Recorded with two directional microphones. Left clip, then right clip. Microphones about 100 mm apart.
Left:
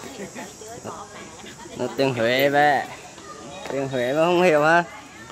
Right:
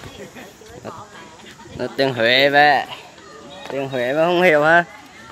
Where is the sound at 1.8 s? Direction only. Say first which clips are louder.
Right 3 dB; 25° right (ahead or behind).